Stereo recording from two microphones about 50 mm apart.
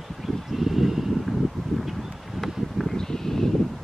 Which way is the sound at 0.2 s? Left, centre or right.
Centre.